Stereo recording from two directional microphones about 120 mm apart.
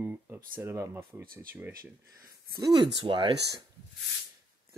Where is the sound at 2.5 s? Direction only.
35° right (ahead or behind).